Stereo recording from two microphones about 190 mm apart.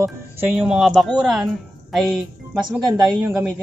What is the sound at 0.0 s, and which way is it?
Speech, 10° right (ahead or behind).